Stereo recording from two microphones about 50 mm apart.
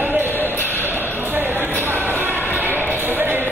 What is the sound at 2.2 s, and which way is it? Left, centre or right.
Basketball bounce, right.